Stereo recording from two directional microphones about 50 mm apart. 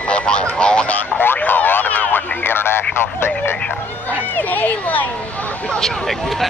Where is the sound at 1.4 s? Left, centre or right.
Left.